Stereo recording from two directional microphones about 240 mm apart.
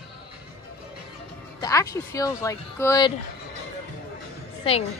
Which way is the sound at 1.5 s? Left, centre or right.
Centre.